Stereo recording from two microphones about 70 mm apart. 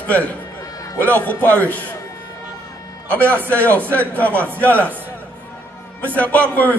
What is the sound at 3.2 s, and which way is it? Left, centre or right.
Speech, right.